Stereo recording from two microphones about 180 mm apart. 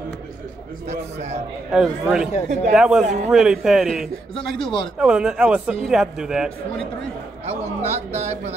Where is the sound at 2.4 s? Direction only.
40° right (ahead or behind).